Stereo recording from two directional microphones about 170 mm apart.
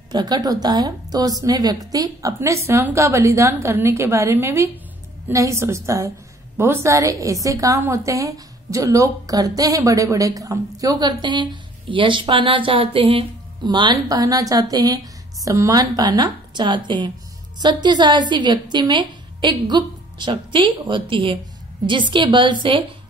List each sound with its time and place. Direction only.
0.1 s a woman's voice: 25° right (ahead or behind)